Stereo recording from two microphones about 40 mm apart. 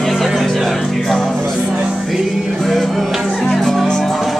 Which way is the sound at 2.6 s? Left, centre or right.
Centre.